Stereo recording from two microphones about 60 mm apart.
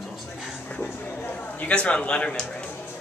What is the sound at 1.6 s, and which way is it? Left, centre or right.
Speech, centre.